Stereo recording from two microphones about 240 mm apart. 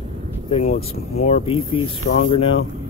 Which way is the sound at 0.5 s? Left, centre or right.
Left.